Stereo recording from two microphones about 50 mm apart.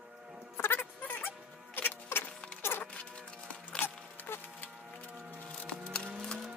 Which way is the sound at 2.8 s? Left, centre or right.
Left.